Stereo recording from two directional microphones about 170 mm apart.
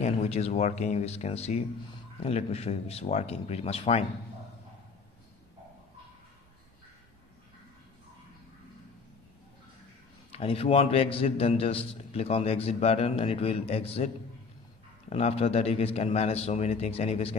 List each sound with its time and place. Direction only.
0.0 s a man's voice: 40° left (ahead or behind)
10.3 s a man's voice: 35° left (ahead or behind)